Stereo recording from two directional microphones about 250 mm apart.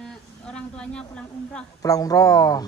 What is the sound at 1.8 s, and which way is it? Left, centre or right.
Speech, centre.